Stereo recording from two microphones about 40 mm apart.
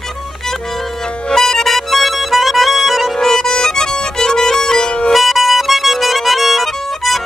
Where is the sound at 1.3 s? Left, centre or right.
Centre.